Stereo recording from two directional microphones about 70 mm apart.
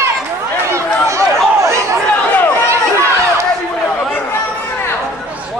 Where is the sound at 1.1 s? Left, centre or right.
Right.